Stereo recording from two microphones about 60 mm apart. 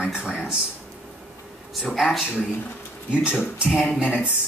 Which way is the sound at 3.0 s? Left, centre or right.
Centre.